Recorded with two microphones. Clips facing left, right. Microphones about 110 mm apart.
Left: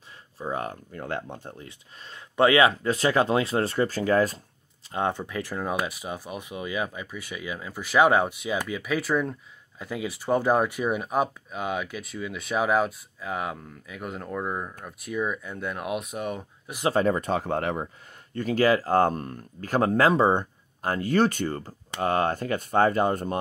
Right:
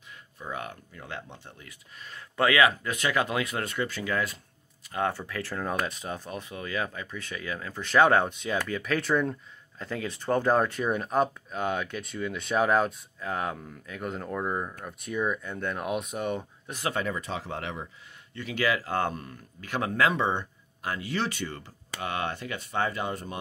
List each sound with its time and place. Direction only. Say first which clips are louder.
0.4 s speech: left 6 dB; 35° left (ahead or behind)
0.9 s speech: left 8 dB; 50° left (ahead or behind)
1.6 s speech: left 4 dB; 25° left (ahead or behind)
4.9 s speech: left 2 dB; 20° left (ahead or behind); by 16.7 s centre (ahead or behind)
16.9 s speech: left 11 dB; 40° left (ahead or behind)